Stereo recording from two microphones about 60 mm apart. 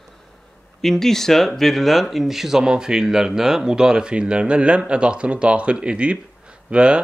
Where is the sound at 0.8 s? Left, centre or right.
Centre.